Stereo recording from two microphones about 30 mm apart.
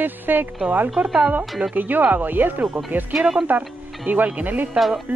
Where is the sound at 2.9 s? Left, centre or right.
Right.